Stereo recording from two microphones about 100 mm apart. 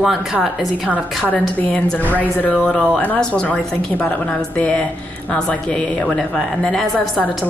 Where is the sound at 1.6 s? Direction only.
15° left (ahead or behind).